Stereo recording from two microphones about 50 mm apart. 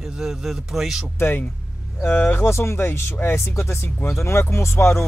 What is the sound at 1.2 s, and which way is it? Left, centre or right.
Speech, left.